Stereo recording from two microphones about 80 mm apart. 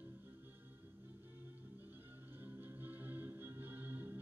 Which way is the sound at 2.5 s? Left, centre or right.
Right.